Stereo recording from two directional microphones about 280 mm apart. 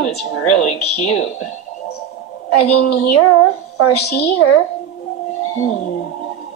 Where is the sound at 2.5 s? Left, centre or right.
Left.